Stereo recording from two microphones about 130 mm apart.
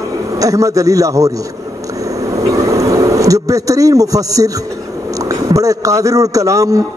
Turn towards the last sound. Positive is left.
turn(degrees=-25)  # may be behind; listen again after turning